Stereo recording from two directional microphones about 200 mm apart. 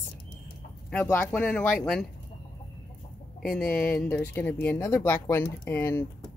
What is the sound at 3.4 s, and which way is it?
Speech, 5° left (ahead or behind).